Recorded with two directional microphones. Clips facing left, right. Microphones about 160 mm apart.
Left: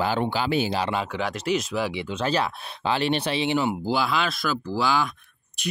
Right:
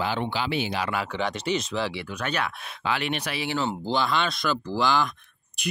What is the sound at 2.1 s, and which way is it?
Speech, 30° left (ahead or behind).